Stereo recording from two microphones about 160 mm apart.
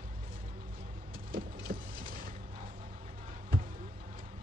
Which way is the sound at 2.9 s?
60° right (ahead or behind).